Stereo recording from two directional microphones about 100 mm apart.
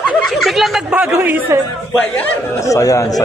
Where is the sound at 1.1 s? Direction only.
15° right (ahead or behind).